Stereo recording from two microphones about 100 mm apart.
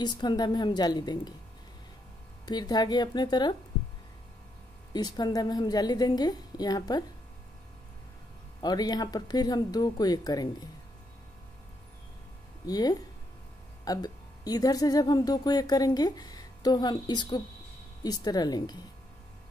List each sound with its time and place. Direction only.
0.0 s a woman's voice: 45° left (ahead or behind)
2.4 s a woman's voice: 45° left (ahead or behind)
4.9 s a woman's voice: 45° left (ahead or behind)
8.5 s a woman's voice: 40° left (ahead or behind)
12.6 s speech: 40° left (ahead or behind)